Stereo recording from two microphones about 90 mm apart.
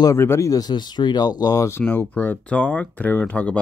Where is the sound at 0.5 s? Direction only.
45° left (ahead or behind).